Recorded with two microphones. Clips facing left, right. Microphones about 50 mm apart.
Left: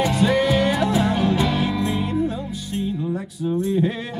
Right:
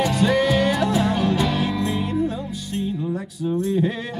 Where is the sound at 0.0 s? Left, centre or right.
Left.